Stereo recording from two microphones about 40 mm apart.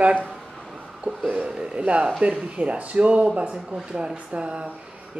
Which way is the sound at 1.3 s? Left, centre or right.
Right.